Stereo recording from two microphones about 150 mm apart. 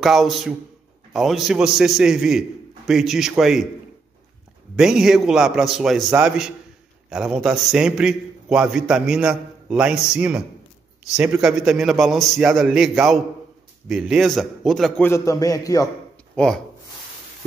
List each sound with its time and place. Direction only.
0.0 s a man's voice: centre (ahead or behind)
4.7 s a man's voice: 5° right (ahead or behind)
15.0 s a man's voice: 20° left (ahead or behind)
16.3 s speech: 5° left (ahead or behind)